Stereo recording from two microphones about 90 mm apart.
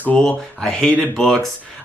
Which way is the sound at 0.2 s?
5° left (ahead or behind).